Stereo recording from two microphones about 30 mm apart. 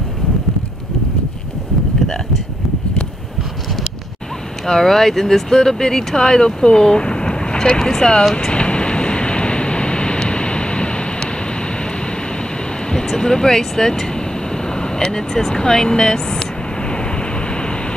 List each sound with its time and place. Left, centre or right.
4.6 s speech: centre; by 7.8 s left
7.8 s speech: left
8.5 s vehicle: left
12.9 s speech: centre